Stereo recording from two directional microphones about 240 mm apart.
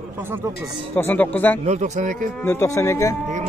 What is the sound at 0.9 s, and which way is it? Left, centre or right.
Speech, centre.